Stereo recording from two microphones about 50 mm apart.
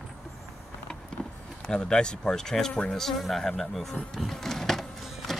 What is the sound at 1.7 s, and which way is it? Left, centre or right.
Speech, centre.